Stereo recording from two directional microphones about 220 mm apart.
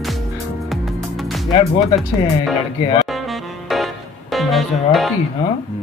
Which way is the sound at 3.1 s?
Centre (ahead or behind).